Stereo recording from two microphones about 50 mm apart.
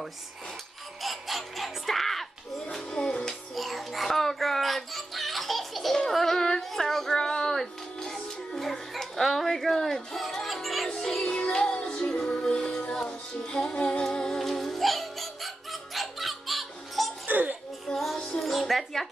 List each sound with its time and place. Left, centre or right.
1.0 s a sound: centre
2.7 s music: centre
3.3 s music: centre
11.2 s music: centre
17.3 s music: right
17.9 s music: centre